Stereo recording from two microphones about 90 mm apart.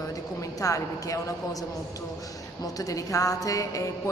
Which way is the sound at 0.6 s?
35° left (ahead or behind).